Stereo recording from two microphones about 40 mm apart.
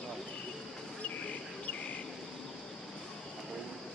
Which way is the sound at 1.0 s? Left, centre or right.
Left.